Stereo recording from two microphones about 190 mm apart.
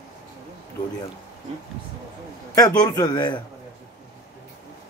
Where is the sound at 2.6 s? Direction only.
20° left (ahead or behind).